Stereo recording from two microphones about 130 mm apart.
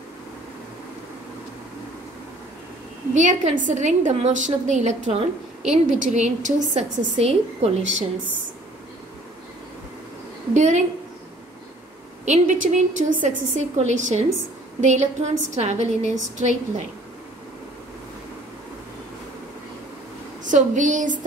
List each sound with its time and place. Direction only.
3.2 s a woman's voice: 75° right (ahead or behind); by 8.0 s 55° right (ahead or behind)
10.5 s a woman's voice: 65° right (ahead or behind)
12.3 s a woman's voice: 70° right (ahead or behind)
20.4 s a woman's voice: 75° right (ahead or behind)